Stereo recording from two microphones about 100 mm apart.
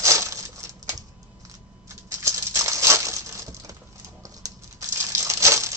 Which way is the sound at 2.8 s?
30° right (ahead or behind).